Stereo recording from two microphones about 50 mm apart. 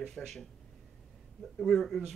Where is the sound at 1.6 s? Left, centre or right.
Centre.